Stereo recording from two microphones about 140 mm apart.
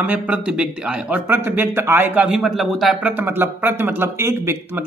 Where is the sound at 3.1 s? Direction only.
15° right (ahead or behind).